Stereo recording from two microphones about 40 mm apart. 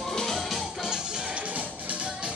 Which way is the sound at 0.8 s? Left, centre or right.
Centre.